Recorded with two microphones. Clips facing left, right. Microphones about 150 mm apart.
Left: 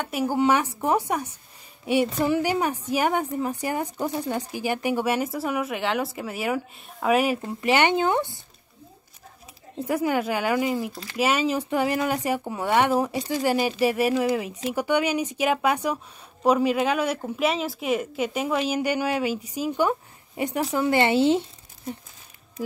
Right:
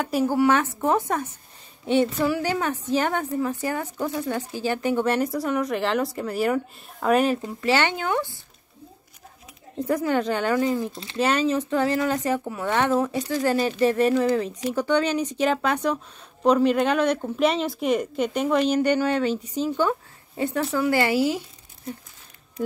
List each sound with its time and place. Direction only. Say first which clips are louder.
0.2 s speech: right 1 dB; 15° left (ahead or behind)
7.4 s speech: left 1 dB; 20° left (ahead or behind)
9.8 s speech: right 1 dB; 10° left (ahead or behind)
10.9 s speech: even; 25° right (ahead or behind)
11.1 s speech: right 1 dB; 5° left (ahead or behind); by 21.5 s 25° left (ahead or behind)